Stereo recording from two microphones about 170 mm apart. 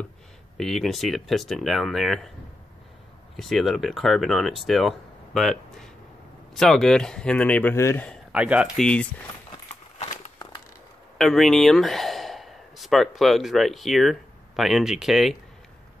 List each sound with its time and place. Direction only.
0.6 s speech: centre (ahead or behind)
3.3 s speech: centre (ahead or behind)
8.3 s speech: 5° right (ahead or behind)
9.9 s a sound: 45° left (ahead or behind)
11.1 s speech: centre (ahead or behind)